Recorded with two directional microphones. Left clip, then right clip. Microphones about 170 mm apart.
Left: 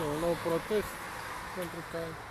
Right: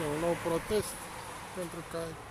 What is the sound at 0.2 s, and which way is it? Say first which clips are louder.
Speech: left 1 dB; 5° right (ahead or behind).